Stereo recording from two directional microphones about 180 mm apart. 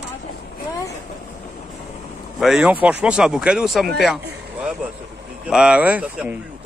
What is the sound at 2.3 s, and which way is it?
Speech, 5° right (ahead or behind).